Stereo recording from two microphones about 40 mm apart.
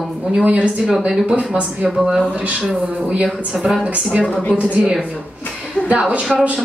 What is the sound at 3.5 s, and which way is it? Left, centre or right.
Speech, centre.